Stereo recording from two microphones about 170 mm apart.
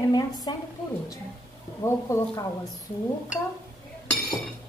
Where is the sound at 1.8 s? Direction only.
15° left (ahead or behind).